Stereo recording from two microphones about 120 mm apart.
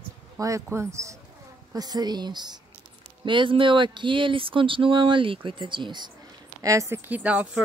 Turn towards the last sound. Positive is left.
turn(degrees=-10)  # may be behind; listen again after turning